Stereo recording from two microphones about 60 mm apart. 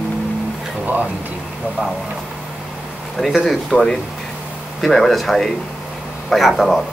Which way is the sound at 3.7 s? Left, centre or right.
Centre.